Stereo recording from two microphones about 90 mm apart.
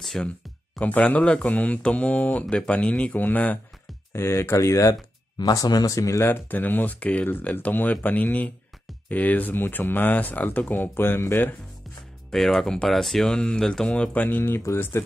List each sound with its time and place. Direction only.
0.0 s speech: 5° left (ahead or behind)
0.7 s speech: 15° left (ahead or behind)
4.1 s speech: 30° left (ahead or behind)
5.4 s speech: 45° left (ahead or behind)
6.5 s speech: 20° left (ahead or behind)
12.3 s speech: 5° left (ahead or behind); by 15.0 s 30° left (ahead or behind)